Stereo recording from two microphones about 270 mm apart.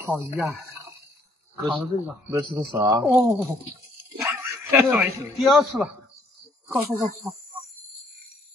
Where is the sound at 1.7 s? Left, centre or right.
Centre.